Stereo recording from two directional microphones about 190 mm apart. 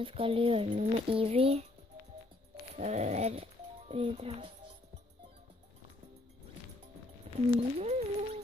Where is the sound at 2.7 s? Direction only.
35° right (ahead or behind).